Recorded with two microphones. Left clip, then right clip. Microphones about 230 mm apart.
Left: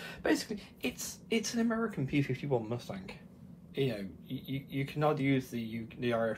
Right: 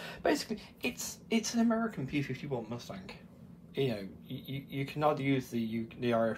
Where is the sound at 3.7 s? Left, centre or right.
Right.